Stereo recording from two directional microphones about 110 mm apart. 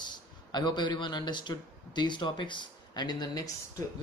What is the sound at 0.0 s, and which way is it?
A man's voice, 40° left (ahead or behind).